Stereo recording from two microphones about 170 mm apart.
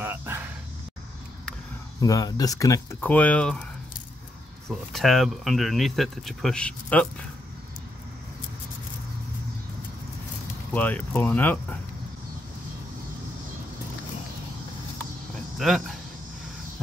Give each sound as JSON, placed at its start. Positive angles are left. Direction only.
{"t": 0.0, "sound": "a sound", "side_deg": -15}
{"t": 2.0, "sound": "speech", "side_deg": 20}
{"t": 4.6, "sound": "speech", "side_deg": 0}
{"t": 10.7, "sound": "speech", "side_deg": 10}
{"t": 15.6, "sound": "speech", "side_deg": 0}